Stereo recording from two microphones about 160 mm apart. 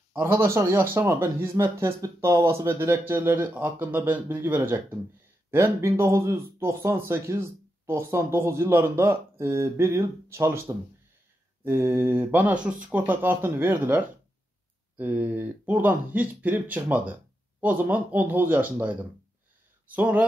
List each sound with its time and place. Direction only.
0.1 s speech: 15° right (ahead or behind)